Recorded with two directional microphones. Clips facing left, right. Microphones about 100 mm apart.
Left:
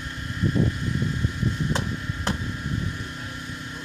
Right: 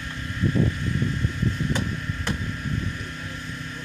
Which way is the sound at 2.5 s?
15° left (ahead or behind).